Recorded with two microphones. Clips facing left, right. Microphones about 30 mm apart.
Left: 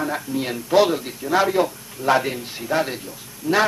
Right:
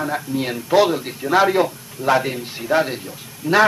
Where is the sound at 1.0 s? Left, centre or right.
Centre.